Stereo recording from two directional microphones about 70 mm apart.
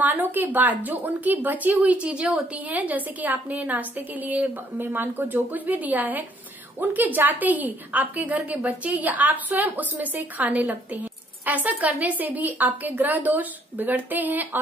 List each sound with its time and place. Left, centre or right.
0.0 s a woman's voice: right